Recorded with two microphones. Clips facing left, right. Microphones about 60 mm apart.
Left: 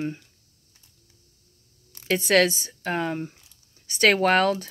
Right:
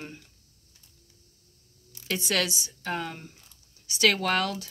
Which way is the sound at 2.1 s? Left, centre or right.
Left.